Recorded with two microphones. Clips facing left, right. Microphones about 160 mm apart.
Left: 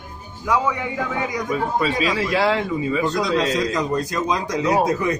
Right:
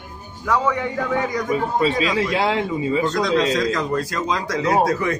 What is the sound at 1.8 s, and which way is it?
Speech, 25° right (ahead or behind).